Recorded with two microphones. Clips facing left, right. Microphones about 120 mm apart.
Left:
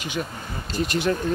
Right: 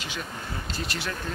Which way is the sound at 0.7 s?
15° left (ahead or behind).